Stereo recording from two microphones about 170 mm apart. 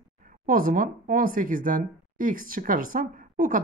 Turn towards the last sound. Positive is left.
turn(degrees=-55)  # may be behind; listen again after turning